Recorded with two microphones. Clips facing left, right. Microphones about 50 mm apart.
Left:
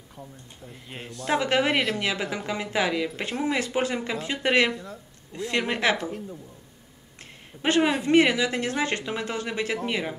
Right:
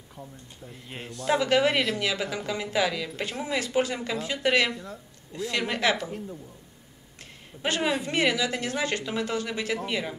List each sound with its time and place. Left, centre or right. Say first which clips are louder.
0.1 s speech: even; centre
1.4 s speech: even; centre
4.7 s speech: left 1 dB; centre
5.3 s speech: left 2 dB; left
6.0 s speech: left 2 dB; centre
7.5 s a man's voice: left 1 dB; centre
8.0 s speech: left 5 dB; left